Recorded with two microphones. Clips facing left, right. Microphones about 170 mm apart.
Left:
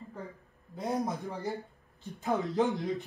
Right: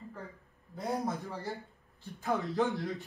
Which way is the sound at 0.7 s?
20° left (ahead or behind).